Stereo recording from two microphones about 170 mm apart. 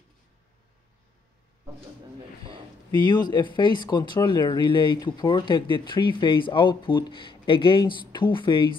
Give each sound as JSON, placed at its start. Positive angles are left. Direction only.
{"t": 2.9, "sound": "speech", "side_deg": 25}